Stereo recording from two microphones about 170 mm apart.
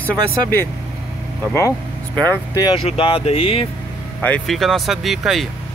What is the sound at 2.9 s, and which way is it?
Speech, 35° left (ahead or behind).